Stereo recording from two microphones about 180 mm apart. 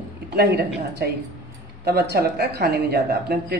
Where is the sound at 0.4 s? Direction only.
60° right (ahead or behind).